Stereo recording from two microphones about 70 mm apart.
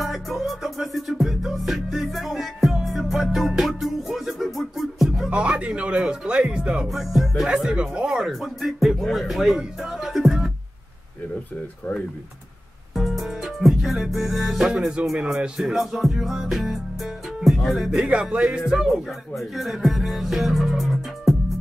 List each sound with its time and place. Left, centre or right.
0.0 s music: centre
5.3 s music: centre
6.9 s music: centre
7.4 s speech: centre
12.9 s music: centre
14.7 s speech: centre
17.6 s music: centre
19.3 s music: centre